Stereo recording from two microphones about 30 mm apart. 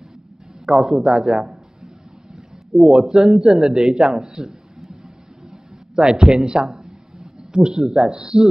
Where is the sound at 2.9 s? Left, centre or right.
Right.